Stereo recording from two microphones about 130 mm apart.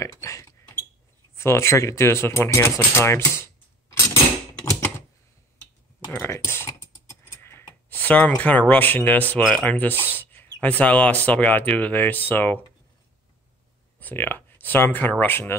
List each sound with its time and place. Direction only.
0.0 s a sound: 25° left (ahead or behind)
1.3 s speech: 20° left (ahead or behind)
4.6 s typewriter: 25° left (ahead or behind)
6.1 s typing: 20° left (ahead or behind)
7.3 s a sound: 20° left (ahead or behind)
9.3 s speech: 10° left (ahead or behind)
13.9 s speech: 15° left (ahead or behind)